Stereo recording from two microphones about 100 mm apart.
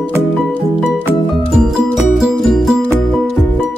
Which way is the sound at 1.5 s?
5° right (ahead or behind).